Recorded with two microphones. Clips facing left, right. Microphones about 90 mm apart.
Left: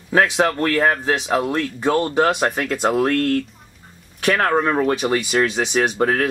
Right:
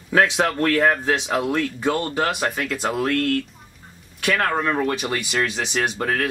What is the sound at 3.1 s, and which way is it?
Speech, 35° left (ahead or behind).